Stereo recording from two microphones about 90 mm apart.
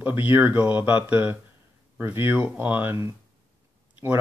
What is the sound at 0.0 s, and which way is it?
Speech, 20° right (ahead or behind).